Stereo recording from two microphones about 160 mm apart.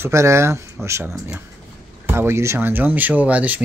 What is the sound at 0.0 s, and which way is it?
Speech, 20° right (ahead or behind).